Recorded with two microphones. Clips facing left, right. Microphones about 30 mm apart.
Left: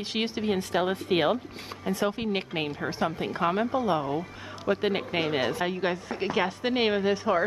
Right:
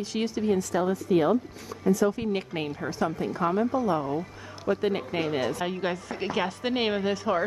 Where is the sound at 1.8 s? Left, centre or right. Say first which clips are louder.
Right 4 dB; left.